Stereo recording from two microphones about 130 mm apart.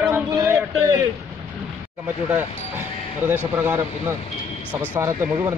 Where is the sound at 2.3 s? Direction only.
15° right (ahead or behind).